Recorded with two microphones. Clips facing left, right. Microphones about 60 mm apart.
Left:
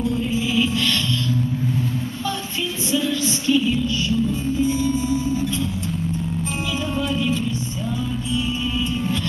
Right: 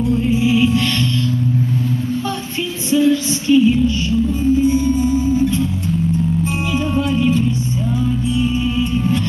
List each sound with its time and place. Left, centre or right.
0.4 s music: centre
2.9 s music: centre
4.6 s music: right